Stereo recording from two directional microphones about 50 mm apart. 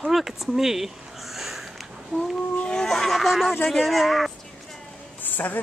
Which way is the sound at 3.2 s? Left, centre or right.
Centre.